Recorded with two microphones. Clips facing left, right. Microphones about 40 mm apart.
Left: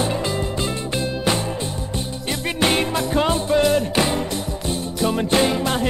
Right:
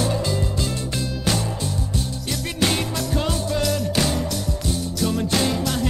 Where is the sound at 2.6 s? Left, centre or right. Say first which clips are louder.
Left 3 dB; left.